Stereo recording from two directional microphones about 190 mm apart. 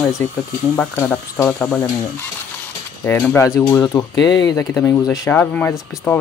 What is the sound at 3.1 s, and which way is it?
Speech, 10° left (ahead or behind).